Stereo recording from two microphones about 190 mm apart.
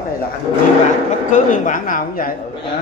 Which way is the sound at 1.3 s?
45° left (ahead or behind).